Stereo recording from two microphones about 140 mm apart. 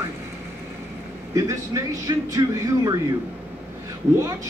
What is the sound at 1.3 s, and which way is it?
A man's voice, 25° right (ahead or behind).